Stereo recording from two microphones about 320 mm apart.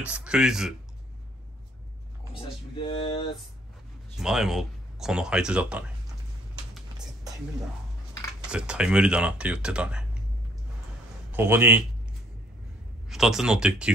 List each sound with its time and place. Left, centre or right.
0.0 s speech: centre
2.7 s speech: centre
4.2 s speech: centre
8.4 s speech: centre
11.3 s a man's voice: centre
13.1 s speech: centre